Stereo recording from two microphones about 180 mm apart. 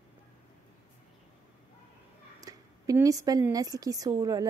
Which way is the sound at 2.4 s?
20° right (ahead or behind).